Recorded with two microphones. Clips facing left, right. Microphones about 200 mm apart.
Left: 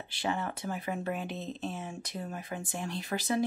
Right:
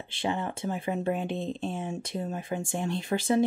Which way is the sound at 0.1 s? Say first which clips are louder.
Right 3 dB; 25° right (ahead or behind).